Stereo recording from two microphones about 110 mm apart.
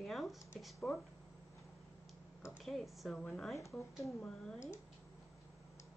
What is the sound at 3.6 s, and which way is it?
Speech, 25° left (ahead or behind).